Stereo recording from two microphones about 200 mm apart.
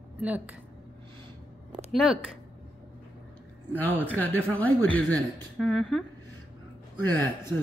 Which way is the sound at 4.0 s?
10° left (ahead or behind).